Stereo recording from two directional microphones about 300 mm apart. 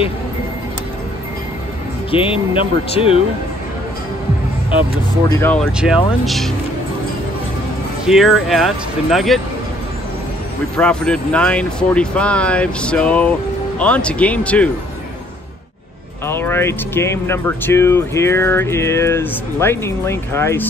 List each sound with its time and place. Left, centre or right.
2.0 s speech: centre
5.4 s speech: centre
8.0 s speech: centre
10.8 s speech: centre
16.3 s speech: centre